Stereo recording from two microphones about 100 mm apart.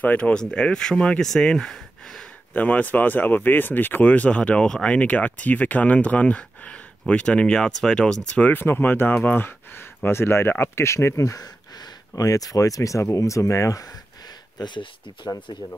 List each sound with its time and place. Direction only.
0.0 s speech: 15° left (ahead or behind)
2.5 s speech: 15° left (ahead or behind); by 13.8 s 30° left (ahead or behind)
14.6 s speech: 50° left (ahead or behind)